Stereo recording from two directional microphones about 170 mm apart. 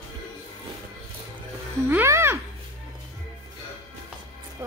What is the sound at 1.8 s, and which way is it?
Music, 15° right (ahead or behind).